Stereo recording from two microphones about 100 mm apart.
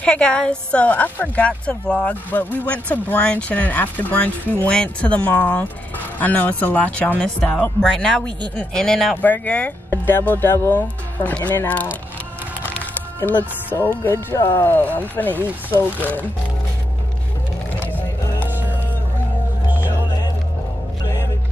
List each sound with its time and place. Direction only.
0.0 s a woman's voice: 10° left (ahead or behind)
12.7 s music: 20° left (ahead or behind)
13.7 s speech: 20° left (ahead or behind)